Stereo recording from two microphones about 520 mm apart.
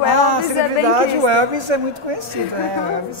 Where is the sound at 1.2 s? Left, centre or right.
Right.